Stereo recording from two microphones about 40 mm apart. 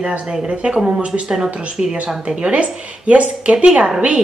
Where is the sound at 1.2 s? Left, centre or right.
Centre.